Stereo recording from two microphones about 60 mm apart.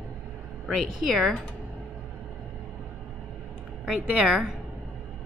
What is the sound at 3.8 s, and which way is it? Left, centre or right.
Speech, centre.